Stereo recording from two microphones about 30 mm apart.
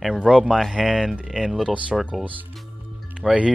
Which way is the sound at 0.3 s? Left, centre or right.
Centre.